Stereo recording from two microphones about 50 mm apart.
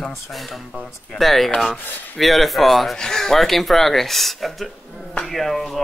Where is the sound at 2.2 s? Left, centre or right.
Centre.